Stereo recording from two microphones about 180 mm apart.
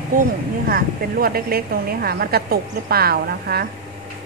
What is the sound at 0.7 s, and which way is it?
A woman's voice, 55° right (ahead or behind).